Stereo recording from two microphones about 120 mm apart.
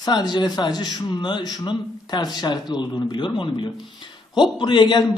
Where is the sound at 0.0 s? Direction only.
35° left (ahead or behind).